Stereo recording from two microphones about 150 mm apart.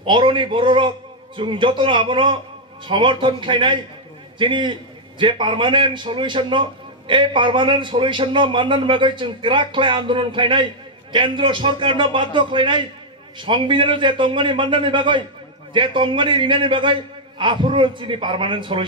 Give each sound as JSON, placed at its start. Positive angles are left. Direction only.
{"t": 0.0, "sound": "a man's voice", "side_deg": -35}